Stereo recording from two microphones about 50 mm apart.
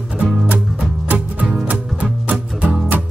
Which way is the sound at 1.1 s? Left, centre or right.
Centre.